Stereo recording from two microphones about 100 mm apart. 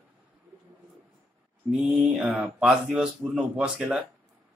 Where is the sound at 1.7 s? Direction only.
15° right (ahead or behind).